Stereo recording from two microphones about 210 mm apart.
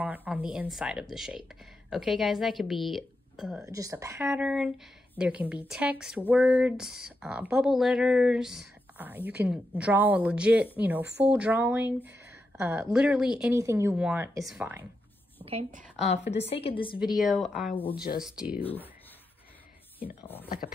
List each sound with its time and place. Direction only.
0.0 s speech: 5° right (ahead or behind)
3.6 s speech: 15° right (ahead or behind)
4.3 s speech: 5° right (ahead or behind)
13.4 s speech: 15° right (ahead or behind)
15.4 s a woman's voice: 30° right (ahead or behind)
16.1 s a woman's voice: 55° left (ahead or behind)
16.4 s a woman's voice: 25° left (ahead or behind)
17.1 s speech: centre (ahead or behind)
18.6 s speech: 10° left (ahead or behind)